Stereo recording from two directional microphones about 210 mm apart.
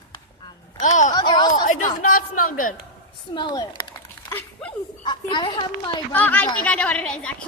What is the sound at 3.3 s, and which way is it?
Speech, 20° left (ahead or behind).